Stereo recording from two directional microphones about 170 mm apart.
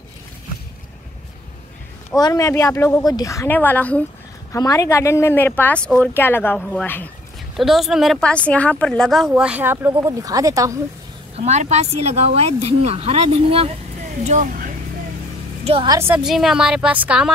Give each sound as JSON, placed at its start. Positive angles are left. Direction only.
{"t": 2.0, "sound": "a woman's voice", "side_deg": 20}
{"t": 11.3, "sound": "speech", "side_deg": -40}
{"t": 15.6, "sound": "a woman's voice", "side_deg": -35}
{"t": 15.9, "sound": "a woman's voice", "side_deg": -15}
{"t": 16.3, "sound": "speech", "side_deg": -5}